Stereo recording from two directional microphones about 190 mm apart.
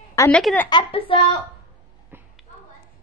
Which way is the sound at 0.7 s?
25° left (ahead or behind).